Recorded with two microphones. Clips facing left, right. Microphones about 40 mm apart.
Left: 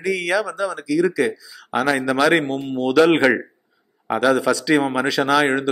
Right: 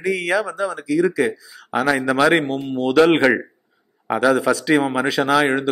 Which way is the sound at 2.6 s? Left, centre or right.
Centre.